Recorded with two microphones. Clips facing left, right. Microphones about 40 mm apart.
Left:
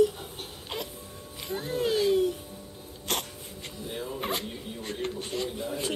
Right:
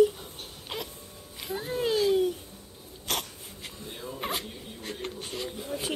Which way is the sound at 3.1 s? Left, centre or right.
Centre.